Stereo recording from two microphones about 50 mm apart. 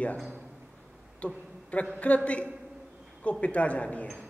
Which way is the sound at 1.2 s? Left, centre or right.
Left.